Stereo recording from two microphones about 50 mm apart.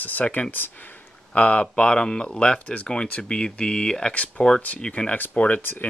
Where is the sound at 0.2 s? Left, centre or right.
Left.